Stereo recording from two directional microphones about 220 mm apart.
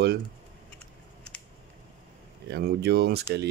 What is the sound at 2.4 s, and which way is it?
Speech, 45° right (ahead or behind).